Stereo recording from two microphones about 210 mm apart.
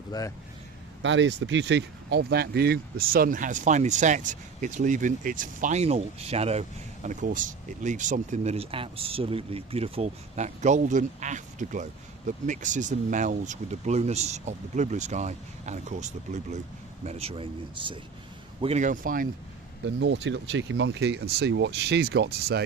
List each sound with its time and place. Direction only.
0.1 s speech: 20° left (ahead or behind)
1.0 s speech: 60° right (ahead or behind); by 19.2 s 40° right (ahead or behind)
20.0 s speech: 60° right (ahead or behind)